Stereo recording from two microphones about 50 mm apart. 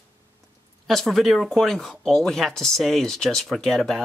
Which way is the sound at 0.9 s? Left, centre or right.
Centre.